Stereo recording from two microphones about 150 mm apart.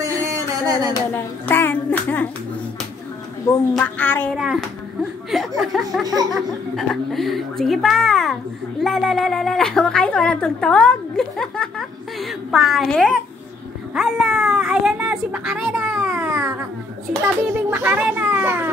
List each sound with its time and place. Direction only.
0.0 s a sound: 20° right (ahead or behind)
1.1 s hands: 15° left (ahead or behind)
3.7 s hands: 10° left (ahead or behind)
4.4 s a woman's voice: centre (ahead or behind)
6.0 s music: 25° right (ahead or behind)
6.9 s a woman's voice: centre (ahead or behind)